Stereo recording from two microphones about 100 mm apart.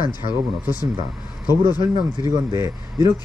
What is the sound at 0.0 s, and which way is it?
Speech, 40° left (ahead or behind).